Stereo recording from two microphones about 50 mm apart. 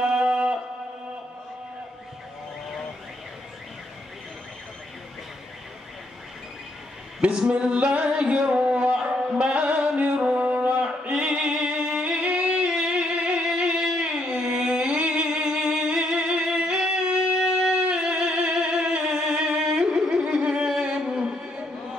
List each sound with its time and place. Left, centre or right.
0.0 s music: centre
7.2 s singing: centre
17.9 s music: centre